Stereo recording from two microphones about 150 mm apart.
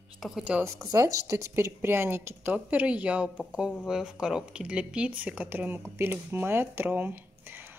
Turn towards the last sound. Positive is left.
turn(degrees=-10)  # may be behind; listen again after turning